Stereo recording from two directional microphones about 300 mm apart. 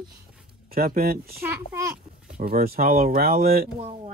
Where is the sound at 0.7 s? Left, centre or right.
Right.